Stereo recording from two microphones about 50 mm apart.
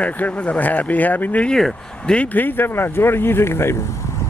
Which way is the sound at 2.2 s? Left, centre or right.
Left.